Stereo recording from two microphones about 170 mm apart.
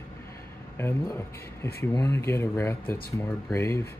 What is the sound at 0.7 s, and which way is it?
Speech, 15° left (ahead or behind).